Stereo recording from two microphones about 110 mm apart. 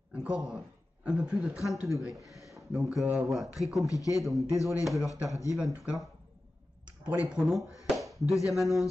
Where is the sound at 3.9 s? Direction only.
30° left (ahead or behind).